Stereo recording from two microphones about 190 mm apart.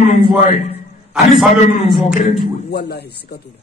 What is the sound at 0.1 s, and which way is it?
Speech, 40° left (ahead or behind).